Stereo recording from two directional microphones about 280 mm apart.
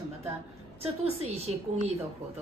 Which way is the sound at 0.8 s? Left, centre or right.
Right.